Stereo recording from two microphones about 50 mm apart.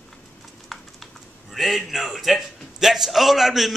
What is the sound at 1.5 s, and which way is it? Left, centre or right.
A man's voice, centre.